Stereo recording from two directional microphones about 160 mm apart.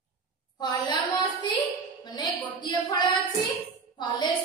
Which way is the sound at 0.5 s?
25° left (ahead or behind).